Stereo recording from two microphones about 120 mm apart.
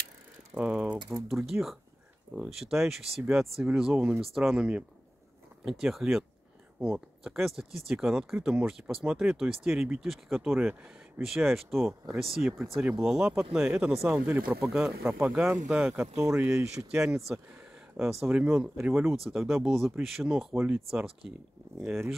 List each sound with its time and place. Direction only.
0.6 s speech: 10° right (ahead or behind)
10.5 s speech: 15° right (ahead or behind)
11.2 s speech: 5° right (ahead or behind)
15.0 s speech: 15° right (ahead or behind)
16.2 s speech: 20° right (ahead or behind)
18.3 s speech: 10° right (ahead or behind)
19.1 s speech: centre (ahead or behind)